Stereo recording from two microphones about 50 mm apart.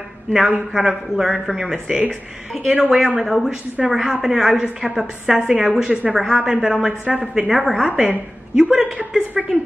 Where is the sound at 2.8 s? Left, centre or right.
Centre.